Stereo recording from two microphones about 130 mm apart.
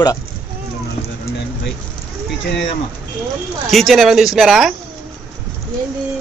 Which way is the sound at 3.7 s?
Centre (ahead or behind).